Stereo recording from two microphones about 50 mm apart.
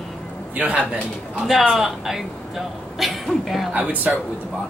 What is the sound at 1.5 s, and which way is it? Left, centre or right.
A woman's voice, centre.